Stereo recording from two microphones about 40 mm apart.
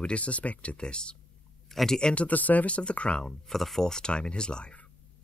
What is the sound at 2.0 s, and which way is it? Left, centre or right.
Speech, left.